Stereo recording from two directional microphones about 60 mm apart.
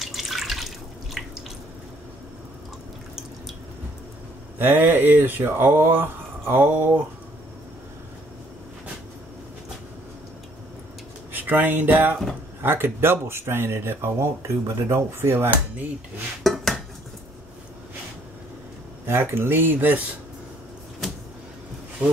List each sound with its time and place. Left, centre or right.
0.0 s drip: centre
4.6 s speech: right
11.3 s speech: right
16.4 s dishes: centre
19.0 s speech: right